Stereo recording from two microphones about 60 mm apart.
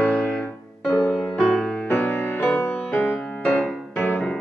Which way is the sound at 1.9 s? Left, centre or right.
Left.